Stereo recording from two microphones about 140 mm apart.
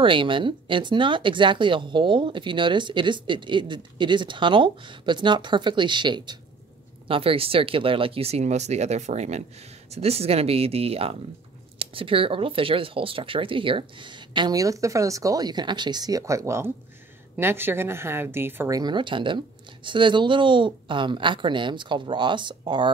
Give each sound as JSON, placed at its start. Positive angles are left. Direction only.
{"t": 0.0, "sound": "a woman's voice", "side_deg": -35}
{"t": 18.8, "sound": "speech", "side_deg": -30}